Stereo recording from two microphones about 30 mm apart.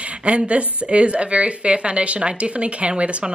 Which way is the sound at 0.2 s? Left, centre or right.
Right.